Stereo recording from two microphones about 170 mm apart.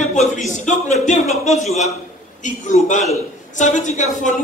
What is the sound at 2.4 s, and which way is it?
A man's voice, 45° left (ahead or behind).